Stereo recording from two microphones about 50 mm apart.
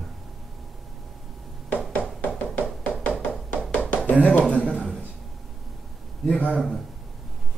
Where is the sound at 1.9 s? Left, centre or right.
Left.